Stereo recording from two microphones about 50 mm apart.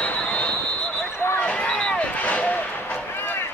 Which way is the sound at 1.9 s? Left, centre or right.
Left.